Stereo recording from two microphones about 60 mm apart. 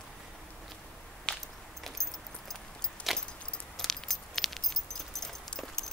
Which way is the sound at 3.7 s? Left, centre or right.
Centre.